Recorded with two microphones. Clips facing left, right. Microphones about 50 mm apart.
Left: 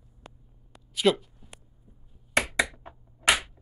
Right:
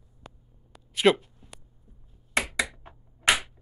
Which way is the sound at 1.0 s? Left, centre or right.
Right.